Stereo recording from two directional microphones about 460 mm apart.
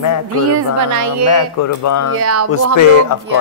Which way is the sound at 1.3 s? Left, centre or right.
Left.